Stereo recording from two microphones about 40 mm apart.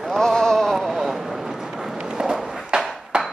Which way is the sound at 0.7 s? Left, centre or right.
Centre.